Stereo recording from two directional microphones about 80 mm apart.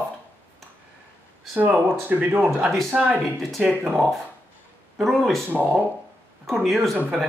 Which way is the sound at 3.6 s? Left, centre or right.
Right.